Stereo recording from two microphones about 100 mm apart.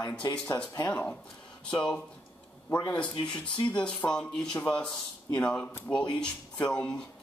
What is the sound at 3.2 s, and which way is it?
Speech, 50° left (ahead or behind).